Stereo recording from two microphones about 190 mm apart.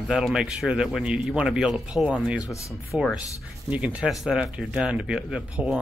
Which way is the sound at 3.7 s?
5° right (ahead or behind).